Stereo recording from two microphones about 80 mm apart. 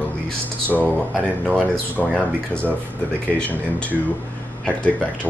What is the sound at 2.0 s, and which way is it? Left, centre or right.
Speech, centre.